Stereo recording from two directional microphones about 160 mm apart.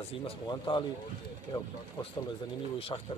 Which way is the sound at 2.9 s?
30° left (ahead or behind).